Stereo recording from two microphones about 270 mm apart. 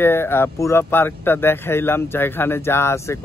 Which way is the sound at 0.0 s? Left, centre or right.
Centre.